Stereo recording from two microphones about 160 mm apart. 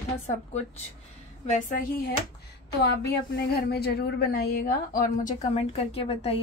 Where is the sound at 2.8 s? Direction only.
90° left; by 5.3 s 65° left (ahead or behind).